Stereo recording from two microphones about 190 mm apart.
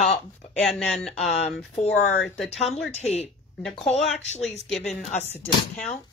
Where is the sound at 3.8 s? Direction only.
35° left (ahead or behind).